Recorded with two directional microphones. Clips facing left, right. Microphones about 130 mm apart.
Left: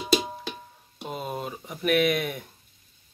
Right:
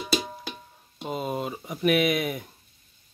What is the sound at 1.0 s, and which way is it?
Speech, centre (ahead or behind).